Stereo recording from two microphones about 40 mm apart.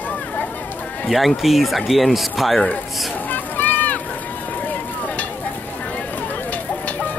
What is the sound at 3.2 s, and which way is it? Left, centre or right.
Run, left.